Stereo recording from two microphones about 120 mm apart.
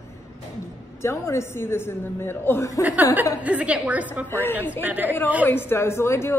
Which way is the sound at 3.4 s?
10° right (ahead or behind).